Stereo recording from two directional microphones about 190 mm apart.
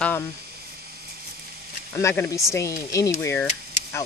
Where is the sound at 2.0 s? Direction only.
10° left (ahead or behind).